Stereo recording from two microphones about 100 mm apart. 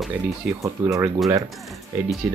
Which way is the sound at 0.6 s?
30° right (ahead or behind).